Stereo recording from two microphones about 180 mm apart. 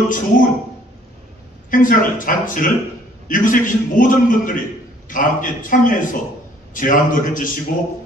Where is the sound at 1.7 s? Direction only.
50° left (ahead or behind).